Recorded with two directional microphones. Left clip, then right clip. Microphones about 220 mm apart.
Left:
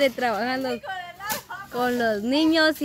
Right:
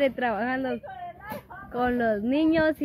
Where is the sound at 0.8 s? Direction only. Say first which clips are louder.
Left 5 dB; 25° left (ahead or behind).